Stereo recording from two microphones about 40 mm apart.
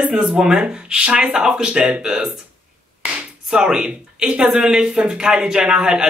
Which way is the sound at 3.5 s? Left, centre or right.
Centre.